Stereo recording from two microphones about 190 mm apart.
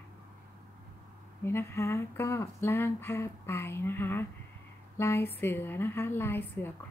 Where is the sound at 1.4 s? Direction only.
15° left (ahead or behind).